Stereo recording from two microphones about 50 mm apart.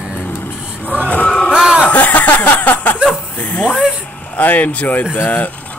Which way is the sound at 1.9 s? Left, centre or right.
Left.